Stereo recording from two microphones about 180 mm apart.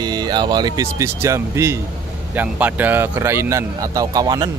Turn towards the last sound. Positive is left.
turn(degrees=-20)  # may be behind; listen again after turning